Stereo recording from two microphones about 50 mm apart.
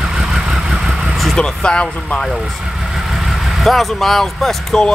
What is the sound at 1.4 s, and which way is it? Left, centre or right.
Speech, centre.